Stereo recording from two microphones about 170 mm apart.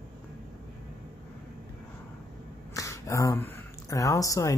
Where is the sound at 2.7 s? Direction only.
20° left (ahead or behind).